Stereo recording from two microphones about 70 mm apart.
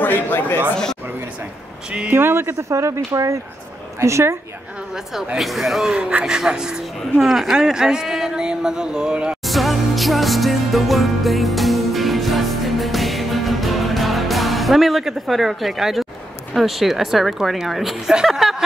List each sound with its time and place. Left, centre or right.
0.0 s speech: left
2.0 s speech: right
2.7 s speech: right
4.9 s a woman's voice: centre
5.9 s speech: centre
6.2 s speech: centre
9.4 s music: centre
16.5 s a woman's voice: centre